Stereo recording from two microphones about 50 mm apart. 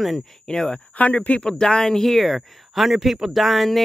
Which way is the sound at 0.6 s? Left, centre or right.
Centre.